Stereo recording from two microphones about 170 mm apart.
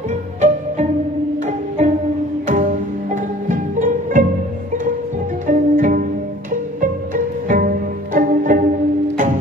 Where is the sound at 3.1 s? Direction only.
50° right (ahead or behind).